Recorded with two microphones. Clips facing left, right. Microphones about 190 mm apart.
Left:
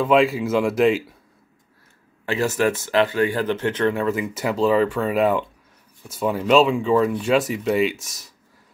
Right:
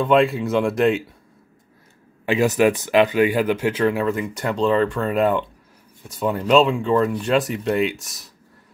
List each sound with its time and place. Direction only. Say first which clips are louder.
0.0 s speech: even; centre (ahead or behind)
2.2 s speech: right 4 dB; 15° right (ahead or behind); by 8.3 s centre (ahead or behind)